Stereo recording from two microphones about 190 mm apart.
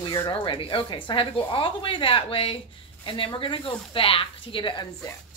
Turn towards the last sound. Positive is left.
turn(degrees=25)  # may be behind; listen again after turning